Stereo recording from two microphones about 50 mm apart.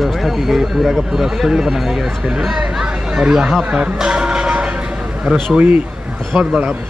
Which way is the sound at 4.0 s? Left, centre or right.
Centre.